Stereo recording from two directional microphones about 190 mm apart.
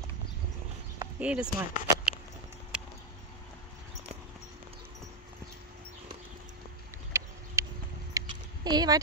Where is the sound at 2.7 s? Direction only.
5° right (ahead or behind).